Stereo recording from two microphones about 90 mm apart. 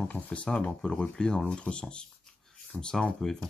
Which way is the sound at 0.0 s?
15° left (ahead or behind).